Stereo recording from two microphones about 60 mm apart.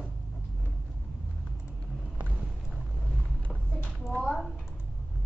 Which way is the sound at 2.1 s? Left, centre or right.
Right.